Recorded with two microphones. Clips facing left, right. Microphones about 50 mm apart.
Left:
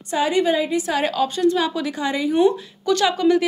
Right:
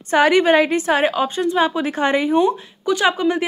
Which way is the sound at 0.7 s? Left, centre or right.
Right.